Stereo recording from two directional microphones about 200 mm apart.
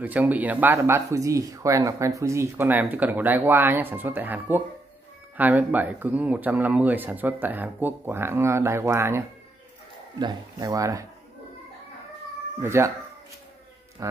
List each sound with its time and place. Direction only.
0.0 s speech: 10° right (ahead or behind)
12.6 s speech: 15° right (ahead or behind)